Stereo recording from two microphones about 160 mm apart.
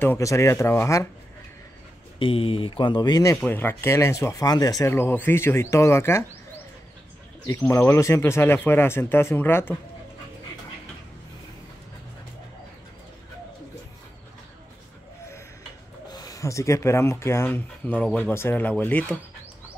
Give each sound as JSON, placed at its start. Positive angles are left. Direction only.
{"t": 0.0, "sound": "speech", "side_deg": 15}
{"t": 2.1, "sound": "speech", "side_deg": 35}
{"t": 3.3, "sound": "speech", "side_deg": 10}
{"t": 7.4, "sound": "speech", "side_deg": 15}
{"t": 16.1, "sound": "speech", "side_deg": 20}